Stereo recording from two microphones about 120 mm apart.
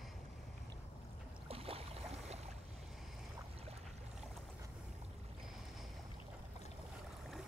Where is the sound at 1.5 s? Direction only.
55° right (ahead or behind).